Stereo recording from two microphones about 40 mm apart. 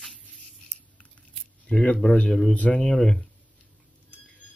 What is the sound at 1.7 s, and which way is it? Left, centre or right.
Speech, left.